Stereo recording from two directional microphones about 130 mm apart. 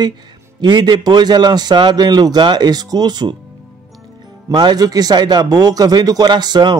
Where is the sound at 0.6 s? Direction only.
35° right (ahead or behind).